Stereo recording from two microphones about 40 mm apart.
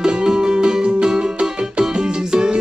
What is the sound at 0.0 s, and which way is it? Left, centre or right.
Music, right.